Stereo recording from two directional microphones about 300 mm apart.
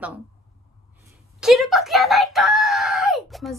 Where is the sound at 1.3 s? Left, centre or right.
Centre.